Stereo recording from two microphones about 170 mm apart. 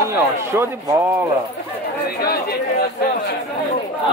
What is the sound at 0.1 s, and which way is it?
Speech, 15° right (ahead or behind).